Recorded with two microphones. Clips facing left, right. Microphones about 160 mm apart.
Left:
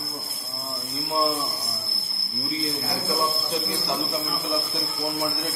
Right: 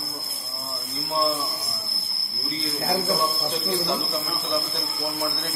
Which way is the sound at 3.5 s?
10° left (ahead or behind).